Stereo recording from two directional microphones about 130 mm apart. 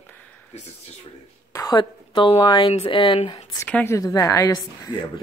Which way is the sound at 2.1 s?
40° left (ahead or behind).